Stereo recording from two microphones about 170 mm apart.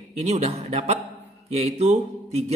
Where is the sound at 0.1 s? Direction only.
40° right (ahead or behind).